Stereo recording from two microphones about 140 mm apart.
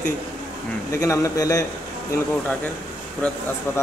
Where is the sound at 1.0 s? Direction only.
25° left (ahead or behind).